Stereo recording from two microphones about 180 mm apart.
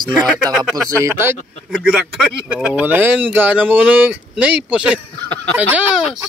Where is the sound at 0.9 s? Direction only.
15° right (ahead or behind).